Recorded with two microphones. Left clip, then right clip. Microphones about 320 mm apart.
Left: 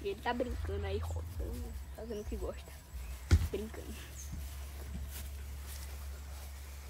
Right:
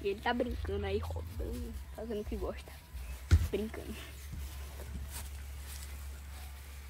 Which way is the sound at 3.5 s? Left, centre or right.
Centre.